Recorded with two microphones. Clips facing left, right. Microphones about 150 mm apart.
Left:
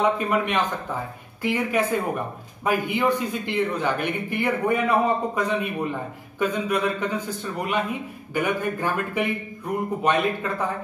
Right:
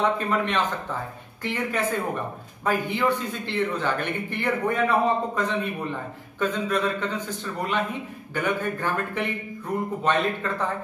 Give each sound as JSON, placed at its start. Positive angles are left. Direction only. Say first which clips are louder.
{"t": 0.0, "sound": "a man's voice", "louder": "left 2 dB", "side_deg": 10}